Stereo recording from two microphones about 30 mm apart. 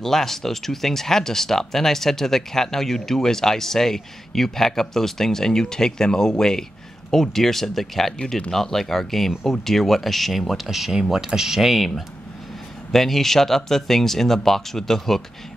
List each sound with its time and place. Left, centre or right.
0.0 s speech: centre
11.2 s speech: centre
12.9 s speech: centre